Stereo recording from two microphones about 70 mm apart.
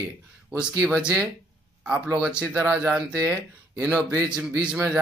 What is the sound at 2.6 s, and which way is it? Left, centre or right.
Speech, centre.